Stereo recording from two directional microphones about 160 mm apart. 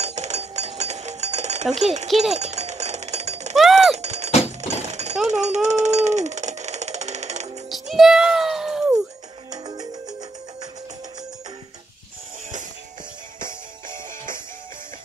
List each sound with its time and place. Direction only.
0.0 s a sound: 45° right (ahead or behind)
2.0 s speech: centre (ahead or behind)
2.3 s chink: 45° right (ahead or behind)
3.5 s a sound: centre (ahead or behind)
3.9 s a sound: 45° right (ahead or behind)
4.6 s breaking: 45° right (ahead or behind)
5.3 s music: 45° right (ahead or behind)
7.7 s music: centre (ahead or behind)
9.5 s music: 25° right (ahead or behind)